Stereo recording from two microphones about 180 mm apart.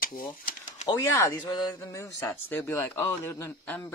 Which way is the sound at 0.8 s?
15° left (ahead or behind).